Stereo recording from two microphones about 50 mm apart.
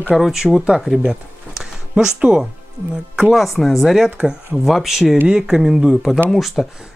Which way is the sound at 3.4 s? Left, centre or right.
Centre.